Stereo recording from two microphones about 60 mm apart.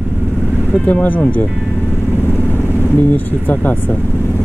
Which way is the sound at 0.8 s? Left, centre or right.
Left.